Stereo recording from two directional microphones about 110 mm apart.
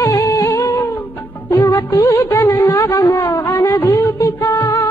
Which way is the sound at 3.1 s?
20° left (ahead or behind).